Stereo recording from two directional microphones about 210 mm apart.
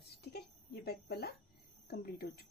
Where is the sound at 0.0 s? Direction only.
50° left (ahead or behind).